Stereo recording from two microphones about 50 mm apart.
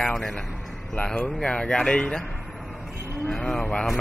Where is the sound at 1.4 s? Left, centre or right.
Centre.